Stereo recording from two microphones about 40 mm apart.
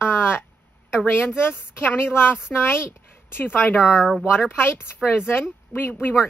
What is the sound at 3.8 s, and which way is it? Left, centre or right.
Speech, centre.